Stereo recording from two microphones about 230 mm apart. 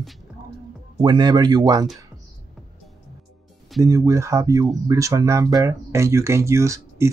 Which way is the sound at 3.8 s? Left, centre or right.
Centre.